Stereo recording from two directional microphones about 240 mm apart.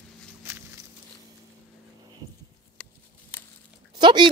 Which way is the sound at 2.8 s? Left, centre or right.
Centre.